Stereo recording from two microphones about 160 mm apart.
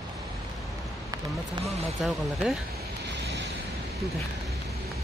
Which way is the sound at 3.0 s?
90° right.